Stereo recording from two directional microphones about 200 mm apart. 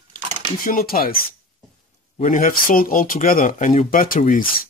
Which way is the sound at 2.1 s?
40° left (ahead or behind).